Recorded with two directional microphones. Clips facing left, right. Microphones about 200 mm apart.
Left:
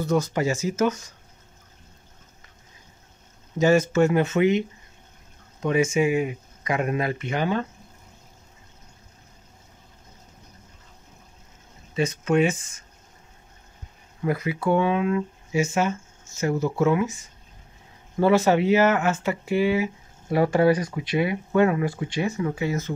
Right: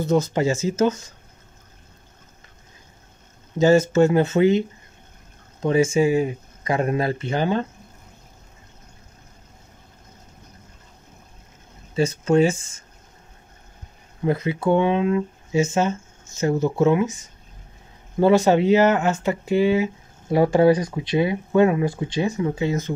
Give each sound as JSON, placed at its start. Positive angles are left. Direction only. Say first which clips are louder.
{"t": 0.0, "sound": "speech", "louder": "right 3 dB", "side_deg": -25}
{"t": 3.5, "sound": "speech", "louder": "right 3 dB", "side_deg": -25}
{"t": 11.9, "sound": "speech", "louder": "right 3 dB", "side_deg": -30}
{"t": 14.2, "sound": "speech", "louder": "right 3 dB", "side_deg": -25}